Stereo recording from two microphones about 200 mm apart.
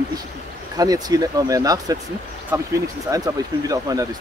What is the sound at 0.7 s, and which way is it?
Speech, 20° right (ahead or behind).